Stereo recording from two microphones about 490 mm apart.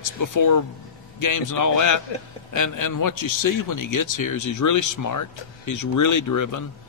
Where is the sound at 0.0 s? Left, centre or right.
Left.